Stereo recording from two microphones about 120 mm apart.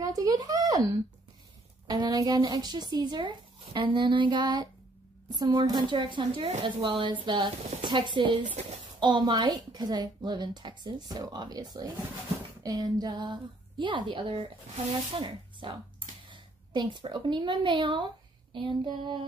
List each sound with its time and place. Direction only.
0.0 s speech: 30° right (ahead or behind)
1.9 s a woman's voice: 35° right (ahead or behind)